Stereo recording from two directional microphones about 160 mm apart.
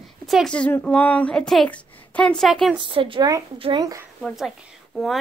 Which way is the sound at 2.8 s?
35° right (ahead or behind).